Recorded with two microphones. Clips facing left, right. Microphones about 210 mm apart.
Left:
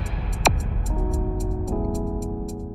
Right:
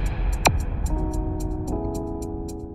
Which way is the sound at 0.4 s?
Centre (ahead or behind).